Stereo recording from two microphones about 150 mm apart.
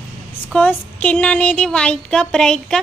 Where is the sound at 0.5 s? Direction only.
10° left (ahead or behind).